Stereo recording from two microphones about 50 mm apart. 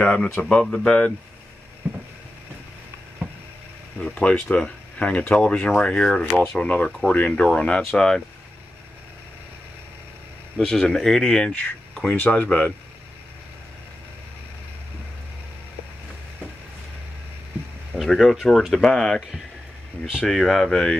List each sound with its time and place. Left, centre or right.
0.0 s speech: left
4.0 s speech: centre
6.6 s speech: left
10.6 s speech: centre
11.9 s a sound: centre
12.2 s speech: left
18.0 s speech: centre
20.2 s speech: centre